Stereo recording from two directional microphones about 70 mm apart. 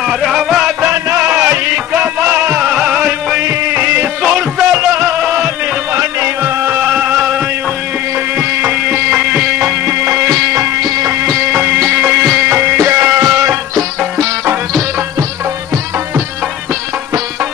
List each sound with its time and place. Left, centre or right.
0.2 s music: centre
1.1 s music: right
2.7 s music: centre
3.4 s music: right
4.2 s music: centre
5.9 s music: right
8.4 s music: right
9.1 s music: centre
9.8 s music: right